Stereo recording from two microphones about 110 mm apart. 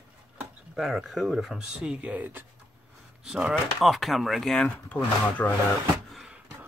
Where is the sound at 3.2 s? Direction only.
5° right (ahead or behind).